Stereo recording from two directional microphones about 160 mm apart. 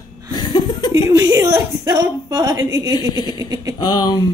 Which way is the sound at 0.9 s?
20° right (ahead or behind).